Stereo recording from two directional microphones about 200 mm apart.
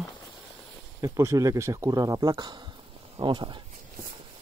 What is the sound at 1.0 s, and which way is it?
Speech, 15° right (ahead or behind).